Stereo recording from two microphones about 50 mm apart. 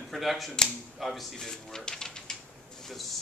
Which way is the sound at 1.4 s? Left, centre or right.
Centre.